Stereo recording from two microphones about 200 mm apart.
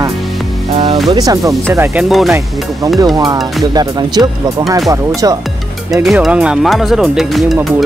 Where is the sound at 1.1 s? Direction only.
20° right (ahead or behind).